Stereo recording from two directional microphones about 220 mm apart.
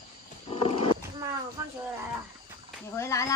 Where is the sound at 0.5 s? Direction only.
25° left (ahead or behind).